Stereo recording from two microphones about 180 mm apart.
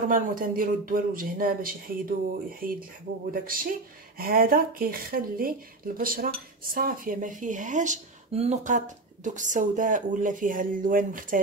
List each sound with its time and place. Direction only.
0.1 s speech: 50° right (ahead or behind)